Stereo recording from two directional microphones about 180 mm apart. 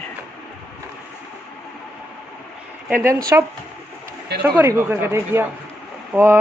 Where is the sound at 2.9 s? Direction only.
15° right (ahead or behind).